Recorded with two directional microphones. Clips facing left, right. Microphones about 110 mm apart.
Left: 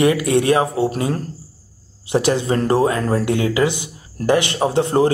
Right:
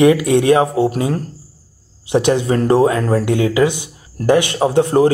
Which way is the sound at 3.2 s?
15° right (ahead or behind).